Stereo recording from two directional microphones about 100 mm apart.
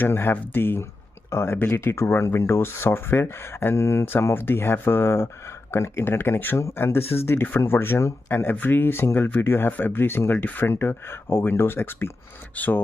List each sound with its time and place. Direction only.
0.0 s speech: 20° left (ahead or behind)